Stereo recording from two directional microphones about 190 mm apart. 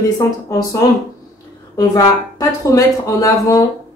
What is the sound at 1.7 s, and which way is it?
Speech, 20° left (ahead or behind).